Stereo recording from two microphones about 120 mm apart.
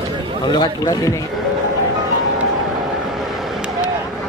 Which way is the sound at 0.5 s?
35° left (ahead or behind).